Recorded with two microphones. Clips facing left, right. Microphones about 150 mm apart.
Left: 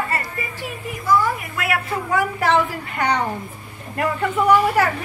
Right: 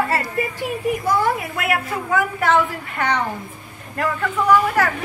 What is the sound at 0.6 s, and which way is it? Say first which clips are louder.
Speech: right 8 dB; 65° right (ahead or behind).